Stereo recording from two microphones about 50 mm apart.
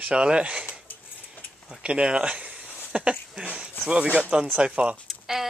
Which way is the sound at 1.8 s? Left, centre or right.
Right.